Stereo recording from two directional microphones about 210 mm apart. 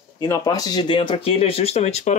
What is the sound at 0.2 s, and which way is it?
Speech, 15° left (ahead or behind).